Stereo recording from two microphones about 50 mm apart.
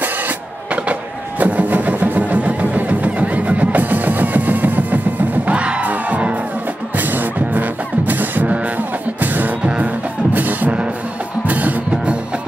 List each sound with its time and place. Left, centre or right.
1.4 s music: right
5.6 s music: right